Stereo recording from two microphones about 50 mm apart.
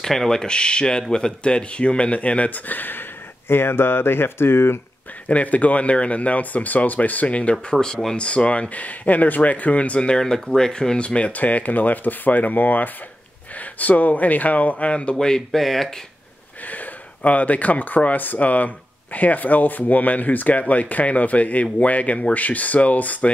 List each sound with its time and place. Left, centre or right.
0.0 s speech: centre; by 4.7 s left
5.3 s speech: left
7.5 s speech: centre
8.3 s speech: left
15.1 s speech: centre
16.6 s speech: left